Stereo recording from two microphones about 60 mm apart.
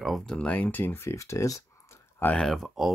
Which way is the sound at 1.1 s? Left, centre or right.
Left.